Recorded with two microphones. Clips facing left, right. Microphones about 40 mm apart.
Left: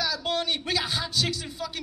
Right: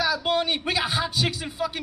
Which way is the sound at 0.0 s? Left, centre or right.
Centre.